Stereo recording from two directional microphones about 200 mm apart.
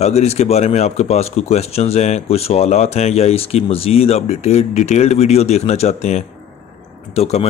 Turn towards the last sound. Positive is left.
turn(degrees=30)  # may be behind; listen again after turning